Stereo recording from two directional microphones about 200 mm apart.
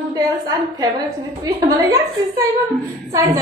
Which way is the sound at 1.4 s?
15° right (ahead or behind).